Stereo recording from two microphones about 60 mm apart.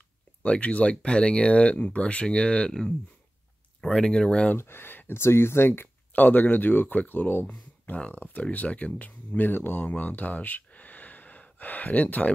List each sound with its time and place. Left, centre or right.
0.4 s speech: left
3.8 s speech: centre
4.6 s speech: left